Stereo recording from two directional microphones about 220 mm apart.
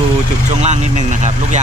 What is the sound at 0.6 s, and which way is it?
Speech, 30° right (ahead or behind).